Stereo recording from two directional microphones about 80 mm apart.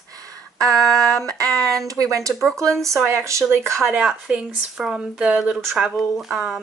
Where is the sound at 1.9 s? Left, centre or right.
Right.